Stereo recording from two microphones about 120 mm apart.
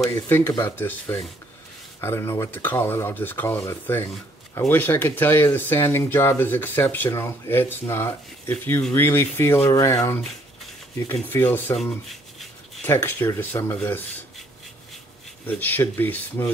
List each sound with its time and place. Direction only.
0.0 s speech: 20° left (ahead or behind)
11.2 s speech: 15° left (ahead or behind)
11.7 s rub: centre (ahead or behind)
12.8 s speech: 20° left (ahead or behind)
15.4 s speech: 15° left (ahead or behind)